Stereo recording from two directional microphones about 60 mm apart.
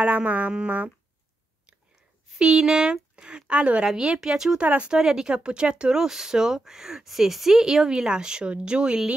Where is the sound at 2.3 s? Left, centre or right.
Centre.